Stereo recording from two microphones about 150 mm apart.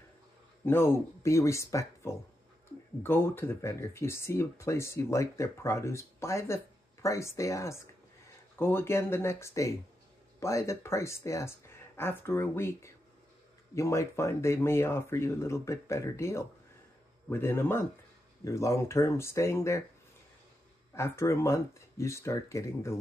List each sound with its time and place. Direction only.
0.7 s speech: 15° left (ahead or behind)
20.9 s speech: 20° left (ahead or behind)